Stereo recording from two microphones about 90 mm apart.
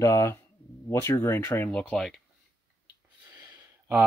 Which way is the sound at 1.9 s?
5° left (ahead or behind).